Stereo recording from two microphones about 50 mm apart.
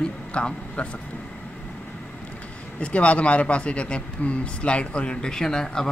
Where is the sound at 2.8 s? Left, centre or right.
Left.